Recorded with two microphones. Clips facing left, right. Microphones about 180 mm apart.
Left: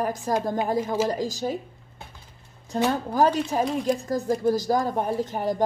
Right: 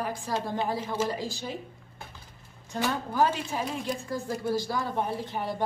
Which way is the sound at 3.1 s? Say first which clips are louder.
Left 4 dB; 40° left (ahead or behind).